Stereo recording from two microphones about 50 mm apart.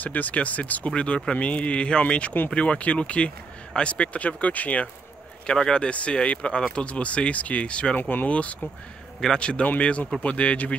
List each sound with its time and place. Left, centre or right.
0.0 s speech: left
5.5 s speech: centre
8.0 s speech: left
8.3 s speech: left